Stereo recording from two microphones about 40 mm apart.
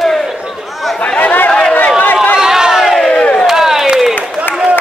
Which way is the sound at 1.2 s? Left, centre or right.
Left.